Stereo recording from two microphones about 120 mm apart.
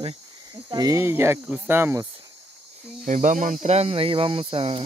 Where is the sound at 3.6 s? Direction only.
60° right (ahead or behind).